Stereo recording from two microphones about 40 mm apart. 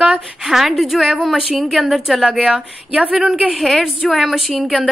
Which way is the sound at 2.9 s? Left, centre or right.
Right.